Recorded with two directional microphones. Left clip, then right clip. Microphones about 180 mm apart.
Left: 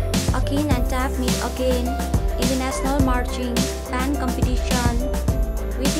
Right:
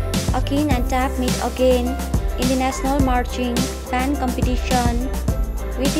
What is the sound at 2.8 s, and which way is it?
Music, centre (ahead or behind).